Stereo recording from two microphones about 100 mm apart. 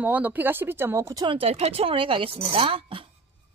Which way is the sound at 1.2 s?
70° right (ahead or behind).